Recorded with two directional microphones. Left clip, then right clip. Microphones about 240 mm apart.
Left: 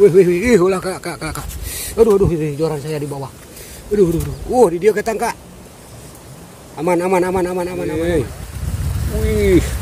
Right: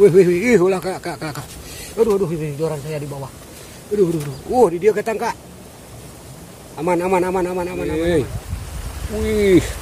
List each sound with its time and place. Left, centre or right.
0.0 s speech: centre
2.0 s a man's voice: left
4.5 s speech: centre
6.8 s speech: left
8.0 s speech: centre